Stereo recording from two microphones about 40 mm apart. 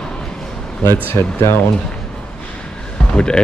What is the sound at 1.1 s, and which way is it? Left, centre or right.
Speech, left.